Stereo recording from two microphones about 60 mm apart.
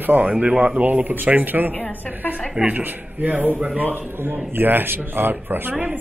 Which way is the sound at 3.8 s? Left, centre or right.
Right.